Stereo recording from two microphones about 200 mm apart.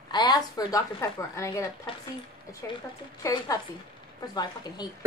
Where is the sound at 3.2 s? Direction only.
15° left (ahead or behind).